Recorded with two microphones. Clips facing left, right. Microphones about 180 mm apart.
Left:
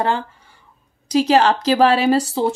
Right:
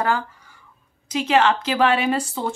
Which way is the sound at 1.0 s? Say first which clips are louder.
Left 4 dB; 35° left (ahead or behind).